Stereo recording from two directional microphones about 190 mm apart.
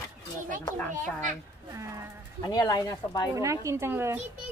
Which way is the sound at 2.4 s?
20° left (ahead or behind).